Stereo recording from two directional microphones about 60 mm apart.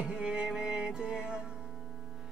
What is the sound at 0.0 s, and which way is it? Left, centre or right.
Music, centre.